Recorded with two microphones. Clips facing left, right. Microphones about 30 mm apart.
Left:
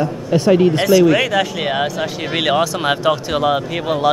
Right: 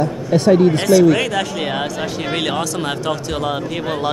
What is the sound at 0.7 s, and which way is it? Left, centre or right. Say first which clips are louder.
Speech: even; centre.